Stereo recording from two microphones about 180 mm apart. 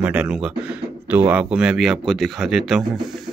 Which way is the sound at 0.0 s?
5° right (ahead or behind).